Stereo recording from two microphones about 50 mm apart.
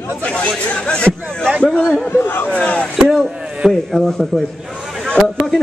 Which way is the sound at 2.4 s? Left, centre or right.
Left.